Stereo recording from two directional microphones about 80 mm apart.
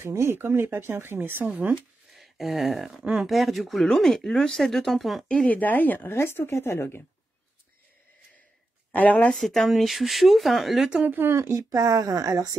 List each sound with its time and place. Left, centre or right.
0.0 s speech: right
2.1 s speech: centre
5.3 s speech: centre
8.9 s speech: centre
9.4 s speech: centre
11.1 s speech: right
11.3 s speech: right